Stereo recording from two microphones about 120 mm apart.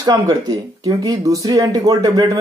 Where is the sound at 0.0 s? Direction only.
35° right (ahead or behind).